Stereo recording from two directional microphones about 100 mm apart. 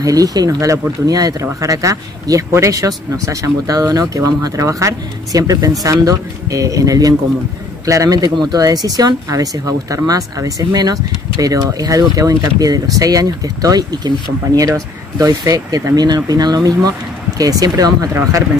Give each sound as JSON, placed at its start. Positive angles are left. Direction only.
{"t": 0.0, "sound": "speech", "side_deg": -35}